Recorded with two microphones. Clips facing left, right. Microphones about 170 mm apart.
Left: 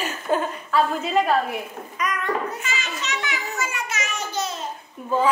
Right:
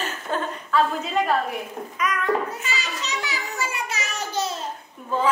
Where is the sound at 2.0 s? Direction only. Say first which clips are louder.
Right 2 dB; centre (ahead or behind).